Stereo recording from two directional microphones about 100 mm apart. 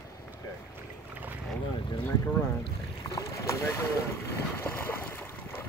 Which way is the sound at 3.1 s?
35° left (ahead or behind).